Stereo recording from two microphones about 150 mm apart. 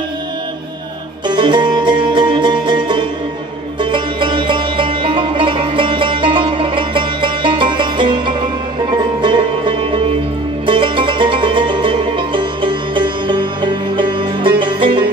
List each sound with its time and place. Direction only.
1.2 s music: 30° right (ahead or behind)